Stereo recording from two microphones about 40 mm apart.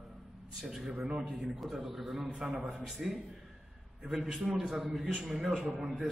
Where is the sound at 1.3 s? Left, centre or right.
Centre.